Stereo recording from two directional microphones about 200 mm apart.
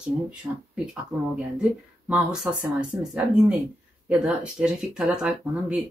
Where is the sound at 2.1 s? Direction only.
Centre (ahead or behind).